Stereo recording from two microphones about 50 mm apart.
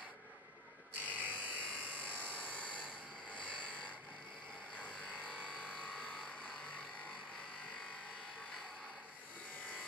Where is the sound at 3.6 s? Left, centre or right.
Left.